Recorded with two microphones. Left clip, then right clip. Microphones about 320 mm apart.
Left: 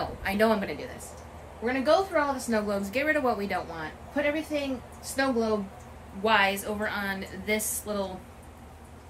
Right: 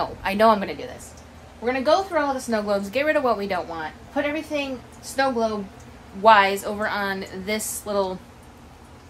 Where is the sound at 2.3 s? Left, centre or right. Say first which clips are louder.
Right 5 dB; centre.